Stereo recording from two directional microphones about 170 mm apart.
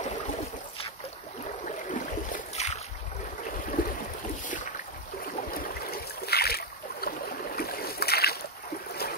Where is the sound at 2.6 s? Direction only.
40° left (ahead or behind).